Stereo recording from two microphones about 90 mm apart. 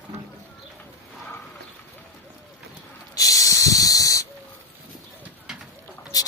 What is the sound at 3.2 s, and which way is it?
Hiss, 40° left (ahead or behind).